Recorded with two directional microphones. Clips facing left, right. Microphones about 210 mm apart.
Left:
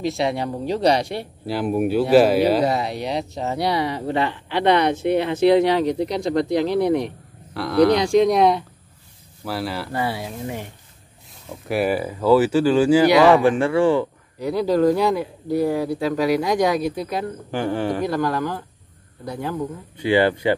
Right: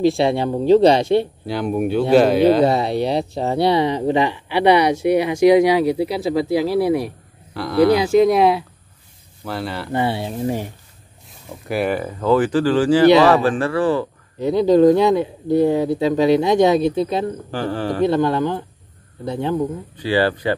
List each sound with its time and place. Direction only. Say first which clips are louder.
0.0 s speech: right 6 dB; 30° right (ahead or behind)
1.4 s speech: even; 5° left (ahead or behind)
2.6 s speech: right 5 dB; 25° right (ahead or behind); by 9.8 s 5° left (ahead or behind)
9.9 s speech: right 7 dB; 25° right (ahead or behind)
11.6 s speech: even; centre (ahead or behind)
14.4 s speech: right 5 dB; 20° right (ahead or behind)
17.5 s speech: even; 15° left (ahead or behind)
18.0 s speech: right 5 dB; 25° right (ahead or behind)
20.0 s speech: left 1 dB; 20° left (ahead or behind)